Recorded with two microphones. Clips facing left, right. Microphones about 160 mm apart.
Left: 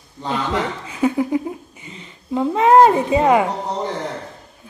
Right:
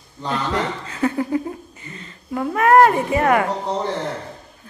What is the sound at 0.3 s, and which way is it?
Speech, 15° left (ahead or behind).